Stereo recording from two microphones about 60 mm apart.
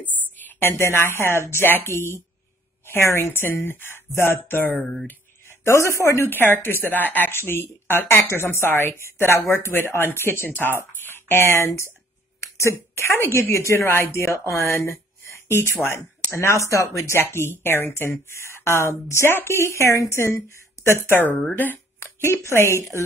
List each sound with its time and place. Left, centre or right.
0.0 s speech: left
6.2 s speech: left
7.3 s speech: left
12.9 s speech: left
17.2 s speech: left
19.6 s speech: left
20.8 s a sound: left
21.5 s a woman's voice: left